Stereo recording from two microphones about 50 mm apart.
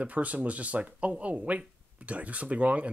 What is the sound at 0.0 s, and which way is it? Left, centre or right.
Speech, right.